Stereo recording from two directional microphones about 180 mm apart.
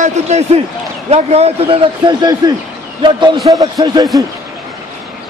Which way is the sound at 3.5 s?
20° right (ahead or behind).